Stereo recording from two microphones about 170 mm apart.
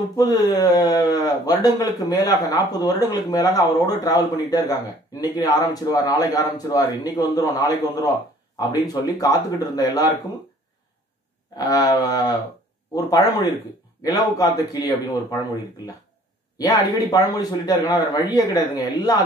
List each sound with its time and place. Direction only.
0.1 s speech: 20° left (ahead or behind)
11.5 s speech: 20° left (ahead or behind)
16.5 s speech: 20° left (ahead or behind)